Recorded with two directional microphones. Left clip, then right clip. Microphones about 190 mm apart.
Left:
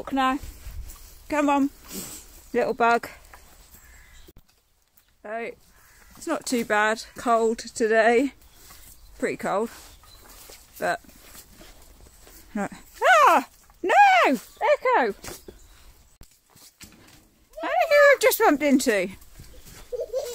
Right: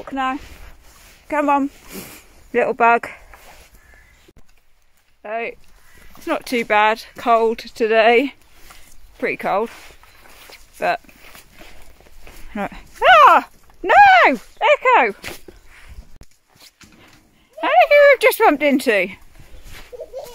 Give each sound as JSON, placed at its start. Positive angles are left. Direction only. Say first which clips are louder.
{"t": 0.0, "sound": "speech", "louder": "right 1 dB", "side_deg": 15}
{"t": 1.9, "sound": "speech", "louder": "right 3 dB", "side_deg": 0}
{"t": 5.2, "sound": "speech", "louder": "right 7 dB", "side_deg": 5}
{"t": 12.5, "sound": "speech", "louder": "right 5 dB", "side_deg": 10}
{"t": 17.6, "sound": "speech", "louder": "right 7 dB", "side_deg": 10}